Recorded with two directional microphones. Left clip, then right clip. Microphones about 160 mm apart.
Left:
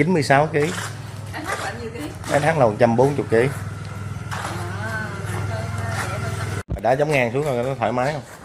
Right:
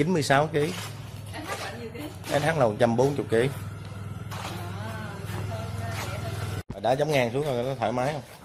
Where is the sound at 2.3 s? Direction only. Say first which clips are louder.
Left 6 dB; 5° right (ahead or behind).